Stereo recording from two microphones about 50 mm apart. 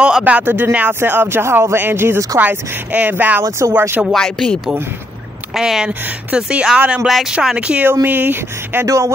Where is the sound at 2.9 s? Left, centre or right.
Right.